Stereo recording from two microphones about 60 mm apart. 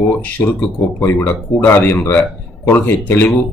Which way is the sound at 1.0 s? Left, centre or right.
Left.